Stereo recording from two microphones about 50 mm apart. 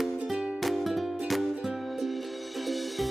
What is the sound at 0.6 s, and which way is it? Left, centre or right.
Music, centre.